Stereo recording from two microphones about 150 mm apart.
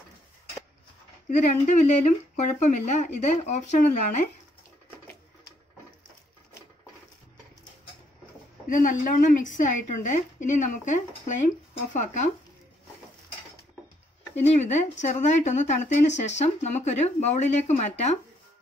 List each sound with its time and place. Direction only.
1.3 s speech: 55° left (ahead or behind)
8.6 s a woman's voice: 60° left (ahead or behind)
14.6 s speech: 50° left (ahead or behind)